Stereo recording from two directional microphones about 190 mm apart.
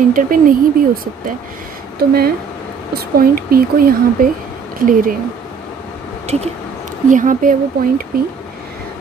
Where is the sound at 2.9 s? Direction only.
50° right (ahead or behind).